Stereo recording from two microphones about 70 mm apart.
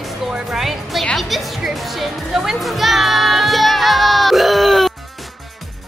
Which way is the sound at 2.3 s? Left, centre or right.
Centre.